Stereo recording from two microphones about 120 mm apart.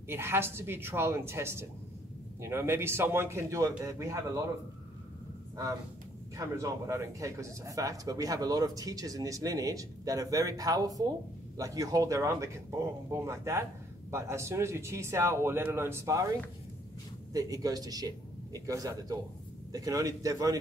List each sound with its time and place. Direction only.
0.1 s speech: 20° right (ahead or behind)
6.3 s speech: 30° right (ahead or behind)
17.3 s a man's voice: 30° right (ahead or behind)